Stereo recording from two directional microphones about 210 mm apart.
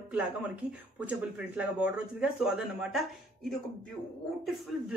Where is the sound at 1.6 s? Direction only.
5° right (ahead or behind).